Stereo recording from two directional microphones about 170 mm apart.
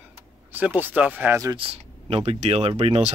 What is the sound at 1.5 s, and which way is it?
Speech, 30° right (ahead or behind).